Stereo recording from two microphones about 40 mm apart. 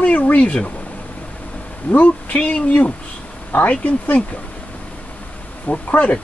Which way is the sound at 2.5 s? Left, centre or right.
Left.